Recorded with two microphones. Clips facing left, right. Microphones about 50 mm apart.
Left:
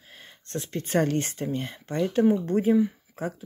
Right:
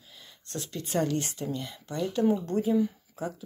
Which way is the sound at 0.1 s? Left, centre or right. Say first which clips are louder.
Left 5 dB; left.